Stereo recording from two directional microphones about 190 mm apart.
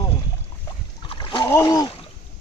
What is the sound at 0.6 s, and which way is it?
Splash, 25° left (ahead or behind).